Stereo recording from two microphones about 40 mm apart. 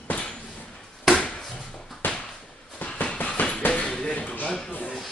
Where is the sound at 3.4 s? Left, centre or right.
Left.